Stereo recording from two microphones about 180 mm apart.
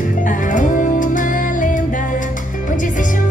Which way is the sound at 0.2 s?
45° left (ahead or behind).